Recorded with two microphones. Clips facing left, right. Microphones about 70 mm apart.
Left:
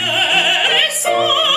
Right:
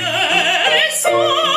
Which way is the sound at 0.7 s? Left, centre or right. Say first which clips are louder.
Right 1 dB; right.